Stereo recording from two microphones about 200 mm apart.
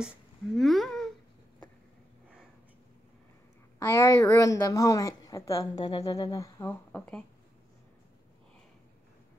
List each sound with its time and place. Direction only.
0.6 s babbling: centre (ahead or behind)
3.8 s a woman's voice: 15° left (ahead or behind)